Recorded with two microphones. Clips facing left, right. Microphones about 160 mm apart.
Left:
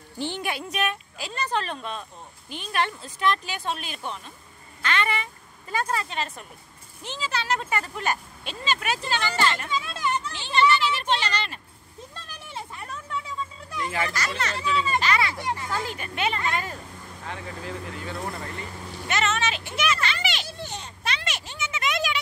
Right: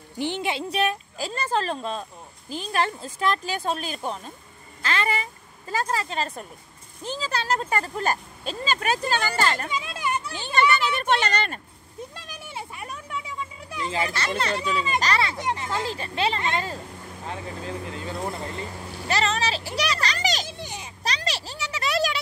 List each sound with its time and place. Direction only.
0.2 s a woman's voice: 20° right (ahead or behind); by 9.7 s 40° right (ahead or behind)
9.7 s children playing: 15° right (ahead or behind)
10.3 s speech: 45° right (ahead or behind)
12.2 s a sound: 10° right (ahead or behind)
13.8 s a child's voice: 25° right (ahead or behind)
14.6 s speech: 40° right (ahead or behind)
15.3 s a child's voice: 20° right (ahead or behind); by 20.4 s 40° right (ahead or behind)
20.4 s children playing: 15° right (ahead or behind)
21.0 s a sound: 35° right (ahead or behind)